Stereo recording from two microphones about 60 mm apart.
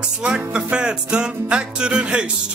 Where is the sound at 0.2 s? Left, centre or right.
Centre.